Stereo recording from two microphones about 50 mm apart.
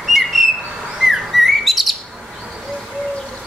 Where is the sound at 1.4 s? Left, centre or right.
Centre.